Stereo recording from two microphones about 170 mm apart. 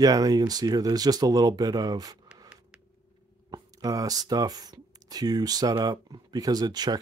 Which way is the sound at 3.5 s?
20° right (ahead or behind).